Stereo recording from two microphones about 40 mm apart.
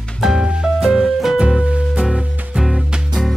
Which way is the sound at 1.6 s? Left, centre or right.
Right.